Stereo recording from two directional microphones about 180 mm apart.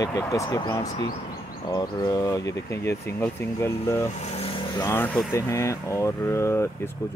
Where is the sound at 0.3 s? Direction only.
15° left (ahead or behind).